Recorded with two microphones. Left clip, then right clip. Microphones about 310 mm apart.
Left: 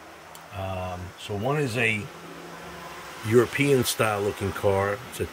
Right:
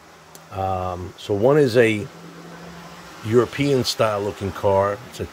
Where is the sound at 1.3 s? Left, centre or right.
Right.